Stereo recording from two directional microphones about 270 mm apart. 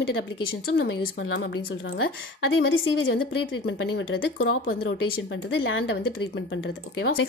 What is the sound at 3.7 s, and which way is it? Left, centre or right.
Speech, left.